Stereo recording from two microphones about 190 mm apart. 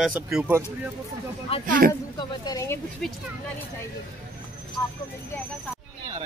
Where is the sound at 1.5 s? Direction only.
30° left (ahead or behind).